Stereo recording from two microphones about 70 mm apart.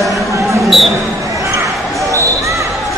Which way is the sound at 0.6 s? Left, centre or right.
Centre.